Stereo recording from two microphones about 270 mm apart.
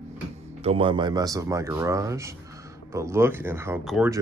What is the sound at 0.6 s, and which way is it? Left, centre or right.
Speech, right.